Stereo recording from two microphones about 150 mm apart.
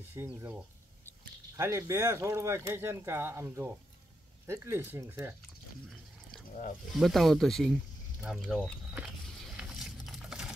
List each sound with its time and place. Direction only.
0.1 s speech: 15° right (ahead or behind)
1.6 s speech: 20° right (ahead or behind)
6.9 s speech: centre (ahead or behind)
9.6 s a sound: centre (ahead or behind)